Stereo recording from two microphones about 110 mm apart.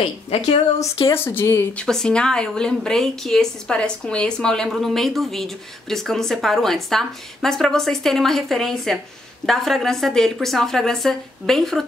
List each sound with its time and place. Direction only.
0.3 s a woman's voice: 70° left (ahead or behind)
1.0 s speech: 20° left (ahead or behind)
1.7 s speech: 5° left (ahead or behind)